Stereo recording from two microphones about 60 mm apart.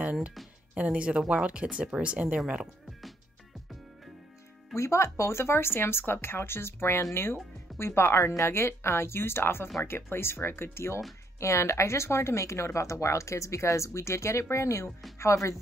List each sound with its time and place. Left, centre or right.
0.0 s speech: right
4.7 s speech: left